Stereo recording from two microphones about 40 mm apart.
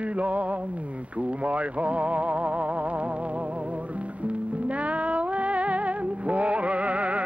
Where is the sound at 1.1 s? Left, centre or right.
Right.